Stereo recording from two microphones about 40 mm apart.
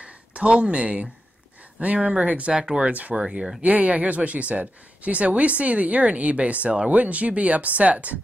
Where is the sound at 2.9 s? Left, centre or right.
Right.